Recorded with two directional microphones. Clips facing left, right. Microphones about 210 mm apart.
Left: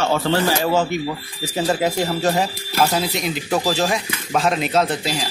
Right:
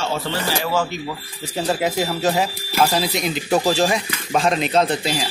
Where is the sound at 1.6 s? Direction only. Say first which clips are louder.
Left 1 dB; centre (ahead or behind).